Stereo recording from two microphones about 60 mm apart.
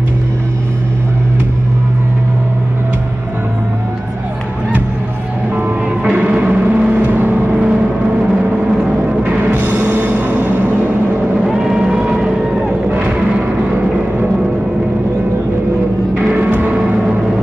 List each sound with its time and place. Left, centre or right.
6.4 s vehicle: right
8.2 s vehicle: centre
9.4 s music: right
11.4 s music: centre
13.7 s music: right
16.3 s music: right
16.7 s gong: centre